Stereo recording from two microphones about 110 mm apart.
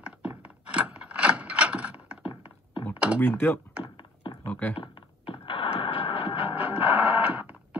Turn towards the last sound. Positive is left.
turn(degrees=-10)  # may be behind; listen again after turning